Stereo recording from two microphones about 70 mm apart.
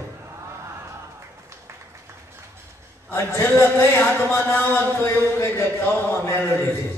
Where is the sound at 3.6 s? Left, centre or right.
Left.